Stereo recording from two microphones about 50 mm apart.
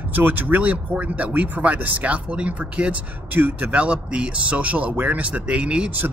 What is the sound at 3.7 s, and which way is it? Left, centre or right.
Speech, right.